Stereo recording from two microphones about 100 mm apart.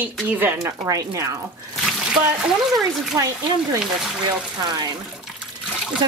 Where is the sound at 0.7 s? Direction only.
35° right (ahead or behind).